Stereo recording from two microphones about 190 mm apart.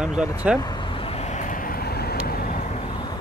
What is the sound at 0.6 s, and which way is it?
Vehicle, 20° left (ahead or behind).